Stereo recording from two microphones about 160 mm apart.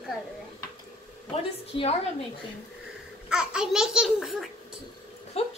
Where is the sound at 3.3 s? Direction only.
5° right (ahead or behind).